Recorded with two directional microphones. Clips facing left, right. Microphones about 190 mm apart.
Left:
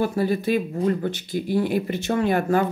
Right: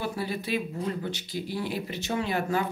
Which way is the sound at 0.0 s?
45° left (ahead or behind).